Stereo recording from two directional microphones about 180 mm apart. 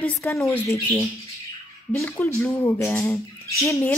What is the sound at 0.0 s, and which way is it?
Speech, 15° left (ahead or behind).